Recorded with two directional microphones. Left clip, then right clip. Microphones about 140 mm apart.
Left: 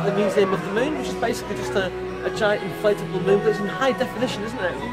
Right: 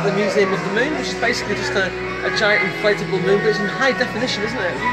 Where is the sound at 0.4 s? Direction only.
10° left (ahead or behind).